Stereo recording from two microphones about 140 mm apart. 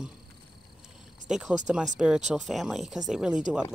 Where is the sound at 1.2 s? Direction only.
5° right (ahead or behind).